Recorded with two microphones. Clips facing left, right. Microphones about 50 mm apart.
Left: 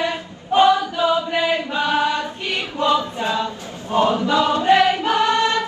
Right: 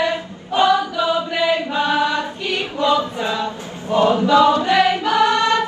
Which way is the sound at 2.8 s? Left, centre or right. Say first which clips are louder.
Right 1 dB; right.